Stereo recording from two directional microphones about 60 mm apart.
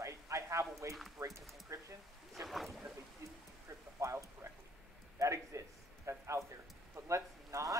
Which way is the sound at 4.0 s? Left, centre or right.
Right.